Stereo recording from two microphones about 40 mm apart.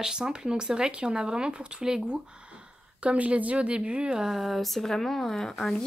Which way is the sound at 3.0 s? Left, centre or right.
Right.